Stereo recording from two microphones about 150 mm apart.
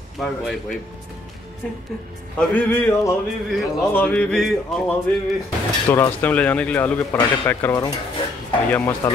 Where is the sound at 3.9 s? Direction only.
10° left (ahead or behind).